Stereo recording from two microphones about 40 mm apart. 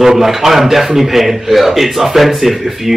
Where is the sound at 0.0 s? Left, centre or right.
Centre.